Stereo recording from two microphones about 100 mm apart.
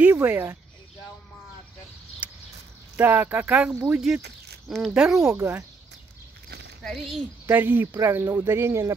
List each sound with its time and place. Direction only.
0.2 s speech: 20° right (ahead or behind)
2.2 s a sound: 15° right (ahead or behind)
3.0 s speech: 20° right (ahead or behind)
5.2 s speech: 25° right (ahead or behind)
6.8 s speech: centre (ahead or behind)
7.4 s speech: 20° right (ahead or behind)